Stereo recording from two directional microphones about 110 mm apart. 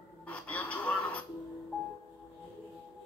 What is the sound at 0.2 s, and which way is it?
Music, 10° left (ahead or behind).